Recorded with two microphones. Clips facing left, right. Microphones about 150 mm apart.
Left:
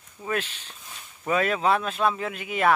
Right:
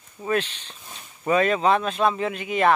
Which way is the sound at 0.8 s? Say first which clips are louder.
Right 2 dB; 20° right (ahead or behind).